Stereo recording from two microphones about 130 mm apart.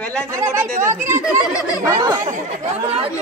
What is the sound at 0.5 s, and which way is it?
Speech, 20° right (ahead or behind).